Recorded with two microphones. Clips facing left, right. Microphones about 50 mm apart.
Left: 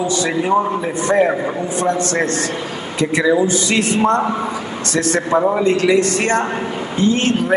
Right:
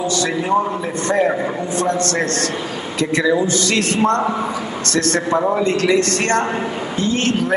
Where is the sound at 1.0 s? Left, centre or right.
Centre.